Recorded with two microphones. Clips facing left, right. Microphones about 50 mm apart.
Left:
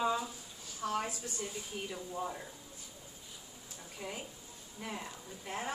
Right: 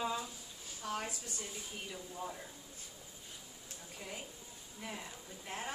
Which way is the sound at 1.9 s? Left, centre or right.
Centre.